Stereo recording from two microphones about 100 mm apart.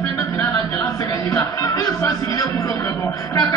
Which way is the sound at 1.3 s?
35° left (ahead or behind).